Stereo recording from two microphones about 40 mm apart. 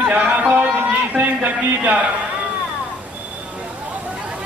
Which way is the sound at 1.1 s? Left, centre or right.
Right.